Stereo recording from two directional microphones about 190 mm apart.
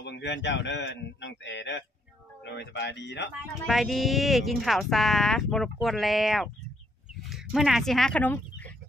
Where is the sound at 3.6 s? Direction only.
Centre (ahead or behind).